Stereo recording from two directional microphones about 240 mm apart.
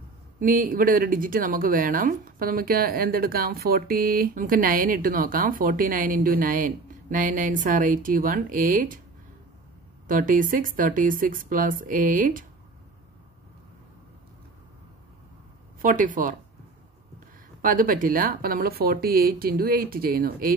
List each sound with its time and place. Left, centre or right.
0.4 s speech: right
10.0 s speech: right
15.8 s speech: right
17.6 s speech: right